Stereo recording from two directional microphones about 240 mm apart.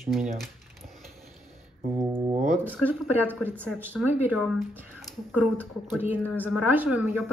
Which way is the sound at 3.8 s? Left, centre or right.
Centre.